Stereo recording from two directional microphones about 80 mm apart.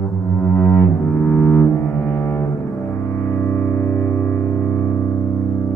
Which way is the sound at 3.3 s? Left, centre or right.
Left.